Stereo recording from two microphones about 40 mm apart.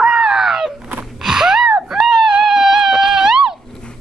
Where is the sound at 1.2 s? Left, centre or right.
Centre.